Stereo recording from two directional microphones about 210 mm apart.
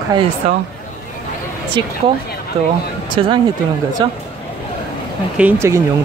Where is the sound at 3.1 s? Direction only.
25° right (ahead or behind).